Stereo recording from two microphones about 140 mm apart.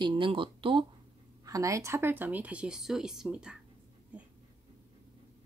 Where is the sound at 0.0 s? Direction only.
35° right (ahead or behind).